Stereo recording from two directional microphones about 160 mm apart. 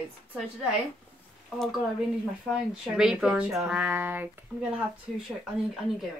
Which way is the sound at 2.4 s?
5° right (ahead or behind).